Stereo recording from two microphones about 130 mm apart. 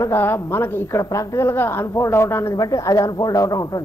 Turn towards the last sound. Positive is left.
turn(degrees=30)  # may be behind; listen again after turning